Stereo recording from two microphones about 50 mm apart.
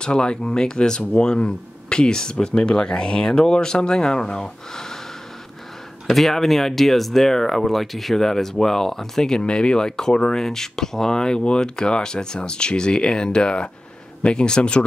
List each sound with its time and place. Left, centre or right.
0.0 s speech: centre
6.0 s speech: centre; by 14.9 s left